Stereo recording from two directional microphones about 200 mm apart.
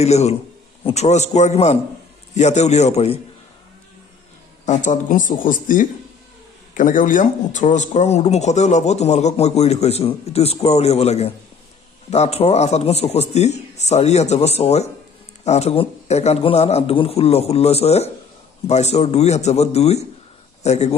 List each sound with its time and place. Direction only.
0.0 s speech: 35° left (ahead or behind)
4.6 s speech: 40° left (ahead or behind)